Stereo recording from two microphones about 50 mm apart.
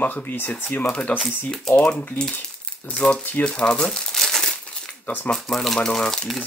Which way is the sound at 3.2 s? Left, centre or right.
Left.